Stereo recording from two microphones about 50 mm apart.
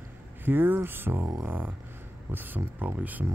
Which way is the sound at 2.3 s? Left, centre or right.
Right.